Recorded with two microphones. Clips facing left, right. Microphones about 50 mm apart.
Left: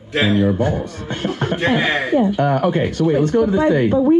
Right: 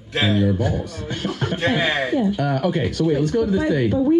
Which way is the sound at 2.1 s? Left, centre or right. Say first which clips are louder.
Left 5 dB; left.